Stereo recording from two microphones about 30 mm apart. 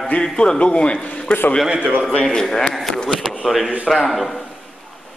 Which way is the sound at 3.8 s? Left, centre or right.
Centre.